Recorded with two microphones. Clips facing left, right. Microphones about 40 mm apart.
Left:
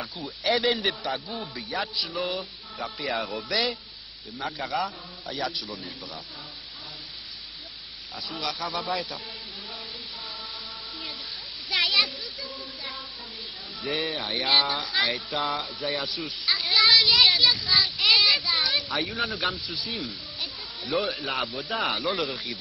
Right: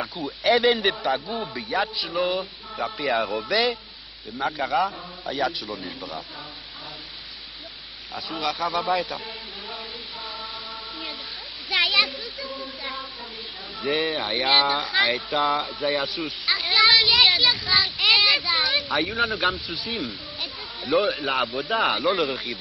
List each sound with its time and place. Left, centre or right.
0.0 s a man's voice: centre
8.1 s a man's voice: centre
11.7 s splash: centre
12.5 s music: centre
13.7 s a man's voice: centre
16.5 s a sound: centre
17.9 s child singing: centre
18.5 s a sound: centre
19.1 s a man's voice: centre
19.9 s a sound: centre
21.2 s a man's voice: centre